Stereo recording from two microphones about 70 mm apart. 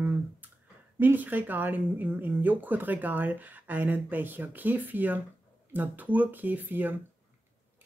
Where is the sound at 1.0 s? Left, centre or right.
Right.